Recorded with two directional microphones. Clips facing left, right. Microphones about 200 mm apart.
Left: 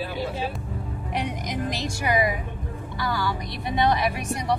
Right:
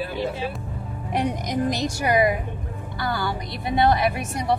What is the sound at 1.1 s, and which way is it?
Speech, 40° right (ahead or behind).